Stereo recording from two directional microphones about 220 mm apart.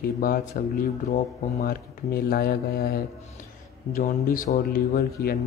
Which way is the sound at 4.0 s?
35° left (ahead or behind).